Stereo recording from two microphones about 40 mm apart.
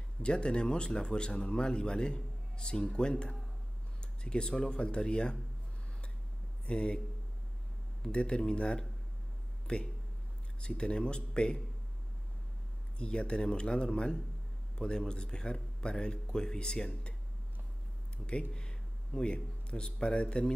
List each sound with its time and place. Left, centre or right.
0.2 s speech: left
6.6 s speech: left
8.0 s speech: left
13.0 s speech: left
18.1 s a sound: left
18.5 s speech: left